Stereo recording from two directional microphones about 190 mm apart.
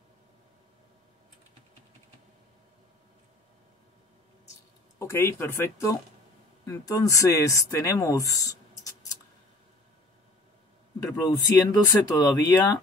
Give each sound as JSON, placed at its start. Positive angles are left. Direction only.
{"t": 4.9, "sound": "speech", "side_deg": 15}
{"t": 11.1, "sound": "speech", "side_deg": 20}